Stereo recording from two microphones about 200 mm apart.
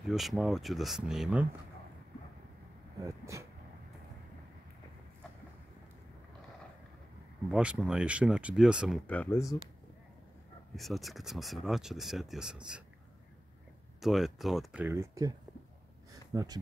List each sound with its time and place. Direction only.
0.0 s speech: centre (ahead or behind)
3.0 s speech: 15° right (ahead or behind)
7.4 s speech: 5° right (ahead or behind); by 9.6 s 15° left (ahead or behind)
10.8 s speech: centre (ahead or behind)
14.0 s speech: centre (ahead or behind)
16.1 s a sound: 15° right (ahead or behind)